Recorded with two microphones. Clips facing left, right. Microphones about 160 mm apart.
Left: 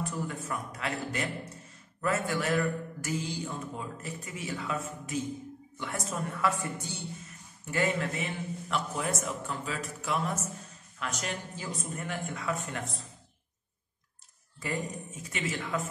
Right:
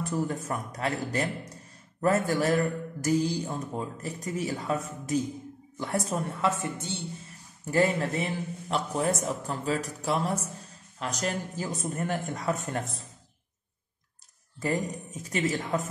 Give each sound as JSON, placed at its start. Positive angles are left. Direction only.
{"t": 0.1, "sound": "a man's voice", "side_deg": -40}
{"t": 7.6, "sound": "a man's voice", "side_deg": -35}
{"t": 14.6, "sound": "a man's voice", "side_deg": -40}